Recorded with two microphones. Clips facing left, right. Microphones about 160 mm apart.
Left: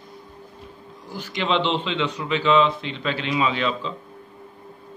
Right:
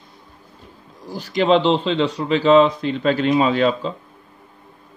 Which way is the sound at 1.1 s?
40° right (ahead or behind).